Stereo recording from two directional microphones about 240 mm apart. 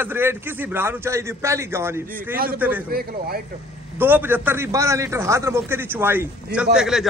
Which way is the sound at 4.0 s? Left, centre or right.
Centre.